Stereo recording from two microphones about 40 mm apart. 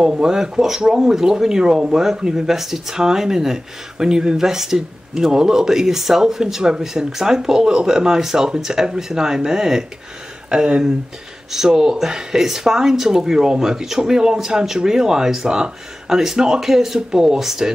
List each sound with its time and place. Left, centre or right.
0.0 s speech: centre